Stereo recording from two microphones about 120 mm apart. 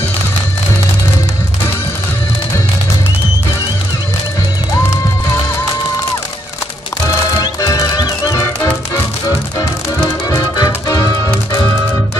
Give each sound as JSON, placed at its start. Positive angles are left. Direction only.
{"t": 7.3, "sound": "music", "side_deg": 30}
{"t": 10.3, "sound": "music", "side_deg": 30}